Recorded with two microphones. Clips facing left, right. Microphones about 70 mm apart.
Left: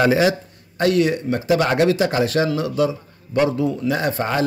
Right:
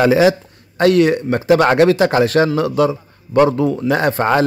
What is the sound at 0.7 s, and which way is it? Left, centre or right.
Speech, right.